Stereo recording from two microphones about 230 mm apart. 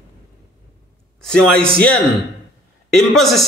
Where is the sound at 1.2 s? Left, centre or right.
Centre.